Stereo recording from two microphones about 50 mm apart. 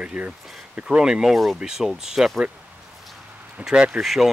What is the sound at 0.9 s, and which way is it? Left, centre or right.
Speech, centre.